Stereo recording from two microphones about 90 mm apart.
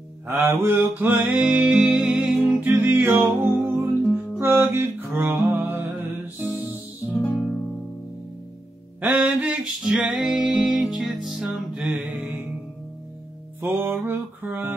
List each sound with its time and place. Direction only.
0.3 s music: 25° right (ahead or behind); by 2.7 s 5° right (ahead or behind)
2.7 s music: 25° right (ahead or behind)
7.2 s music: 5° left (ahead or behind)
9.0 s music: 10° right (ahead or behind)
13.6 s music: 25° right (ahead or behind)